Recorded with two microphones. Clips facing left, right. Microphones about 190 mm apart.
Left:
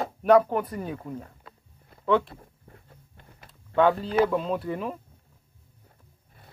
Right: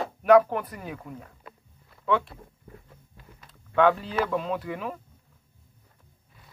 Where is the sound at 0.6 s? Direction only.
30° left (ahead or behind).